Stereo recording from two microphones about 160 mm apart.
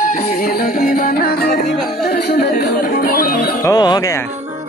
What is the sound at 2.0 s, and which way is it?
Music, 85° left.